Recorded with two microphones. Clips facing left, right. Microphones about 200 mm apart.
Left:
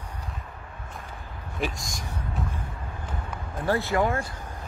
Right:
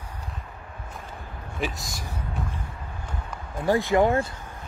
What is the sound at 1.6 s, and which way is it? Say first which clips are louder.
Speech: even; centre (ahead or behind).